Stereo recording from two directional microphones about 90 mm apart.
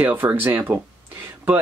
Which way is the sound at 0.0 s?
20° right (ahead or behind).